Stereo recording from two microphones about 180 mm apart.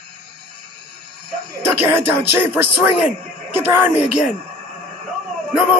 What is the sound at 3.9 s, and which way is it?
Speech, 35° left (ahead or behind).